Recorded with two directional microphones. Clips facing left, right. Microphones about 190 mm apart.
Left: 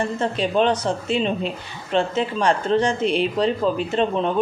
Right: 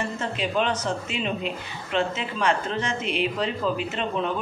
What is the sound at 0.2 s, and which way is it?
Speech, 35° left (ahead or behind).